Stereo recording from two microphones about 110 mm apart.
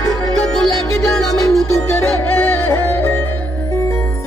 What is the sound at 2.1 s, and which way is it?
Music, 20° left (ahead or behind).